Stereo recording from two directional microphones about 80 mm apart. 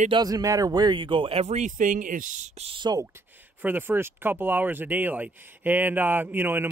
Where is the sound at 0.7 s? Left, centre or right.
Right.